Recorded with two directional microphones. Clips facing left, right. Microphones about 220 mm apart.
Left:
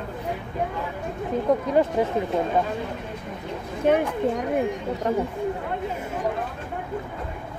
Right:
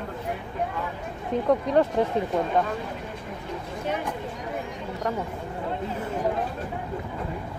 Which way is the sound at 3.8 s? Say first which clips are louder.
Left 10 dB; 60° left (ahead or behind).